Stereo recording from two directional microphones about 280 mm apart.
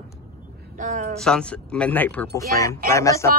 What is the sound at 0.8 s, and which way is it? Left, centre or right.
Speech, right.